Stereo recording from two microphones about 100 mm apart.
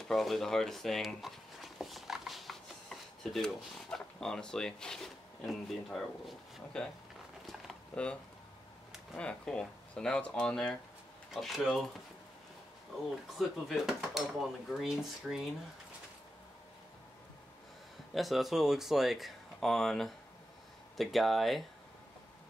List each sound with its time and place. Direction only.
0.1 s a sound: centre (ahead or behind)
4.2 s speech: 5° left (ahead or behind)
7.9 s speech: 10° left (ahead or behind)
13.4 s speech: centre (ahead or behind)
18.1 s speech: centre (ahead or behind)